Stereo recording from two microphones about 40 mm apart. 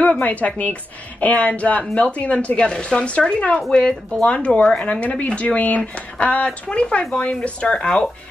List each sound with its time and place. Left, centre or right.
0.2 s a woman's voice: left